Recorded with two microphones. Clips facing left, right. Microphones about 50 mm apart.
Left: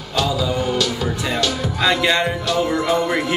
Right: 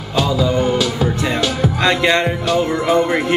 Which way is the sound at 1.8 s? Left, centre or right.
Centre.